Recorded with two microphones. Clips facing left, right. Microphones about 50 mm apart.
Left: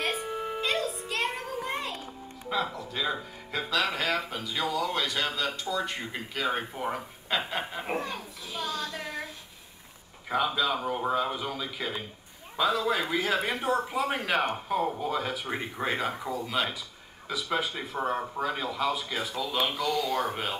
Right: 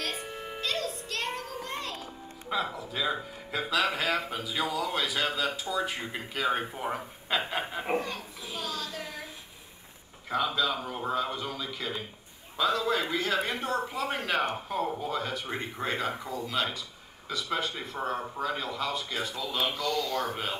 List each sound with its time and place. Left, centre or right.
0.0 s music: left
2.5 s speech: centre
8.5 s a sound: centre
10.3 s speech: centre